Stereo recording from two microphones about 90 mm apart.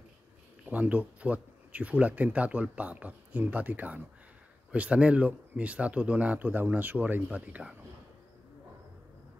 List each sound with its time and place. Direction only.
0.7 s speech: 15° right (ahead or behind)